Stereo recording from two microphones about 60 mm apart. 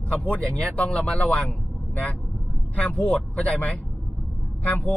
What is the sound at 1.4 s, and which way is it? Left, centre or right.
Vehicle, left.